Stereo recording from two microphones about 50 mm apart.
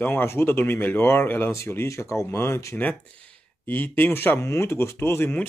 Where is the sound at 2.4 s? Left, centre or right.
Left.